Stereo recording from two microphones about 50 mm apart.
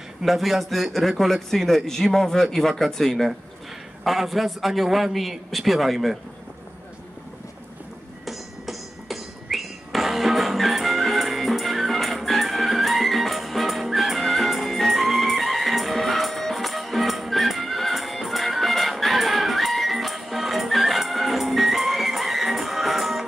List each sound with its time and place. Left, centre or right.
0.2 s a man's voice: centre
8.3 s music: centre